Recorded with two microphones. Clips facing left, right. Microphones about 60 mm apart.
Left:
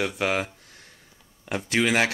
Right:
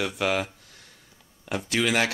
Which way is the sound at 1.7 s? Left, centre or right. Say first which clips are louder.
Left 2 dB; centre.